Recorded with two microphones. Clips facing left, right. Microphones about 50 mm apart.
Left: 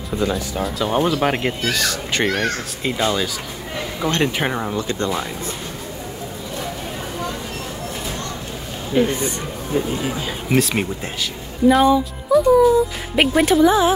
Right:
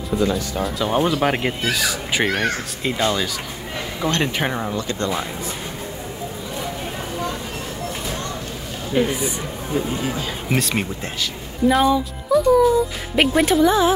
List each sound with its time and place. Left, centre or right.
0.3 s speech: centre
4.7 s speech: left
8.9 s speech: centre